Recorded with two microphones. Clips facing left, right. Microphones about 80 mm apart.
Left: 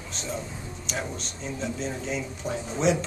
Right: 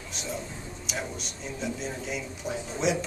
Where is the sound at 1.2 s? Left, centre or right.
Centre.